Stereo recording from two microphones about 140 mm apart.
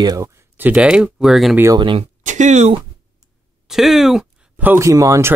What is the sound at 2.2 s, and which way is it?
Speech, 60° right (ahead or behind).